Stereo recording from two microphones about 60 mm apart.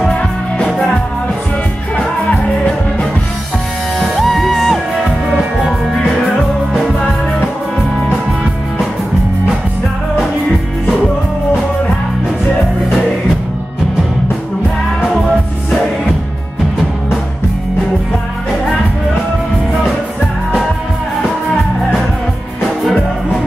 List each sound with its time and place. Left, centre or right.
0.1 s music: centre
2.0 s music: centre
4.0 s music: centre
15.0 s music: centre